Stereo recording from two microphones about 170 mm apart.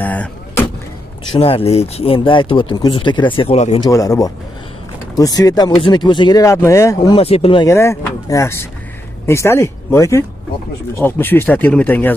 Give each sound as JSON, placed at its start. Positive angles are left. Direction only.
{"t": 0.0, "sound": "vehicle", "side_deg": 10}
{"t": 1.3, "sound": "speech", "side_deg": 35}
{"t": 3.8, "sound": "speech", "side_deg": 20}
{"t": 7.2, "sound": "speech", "side_deg": 35}
{"t": 7.6, "sound": "speech", "side_deg": 15}